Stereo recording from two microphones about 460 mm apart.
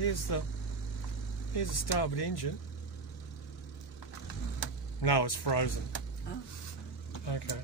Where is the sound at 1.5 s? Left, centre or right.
Left.